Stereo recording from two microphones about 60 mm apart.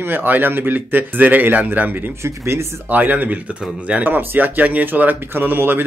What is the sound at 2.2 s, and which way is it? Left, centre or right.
Speech, right.